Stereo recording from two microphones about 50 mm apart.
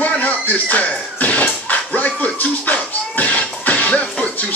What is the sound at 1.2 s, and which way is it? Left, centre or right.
Music, left.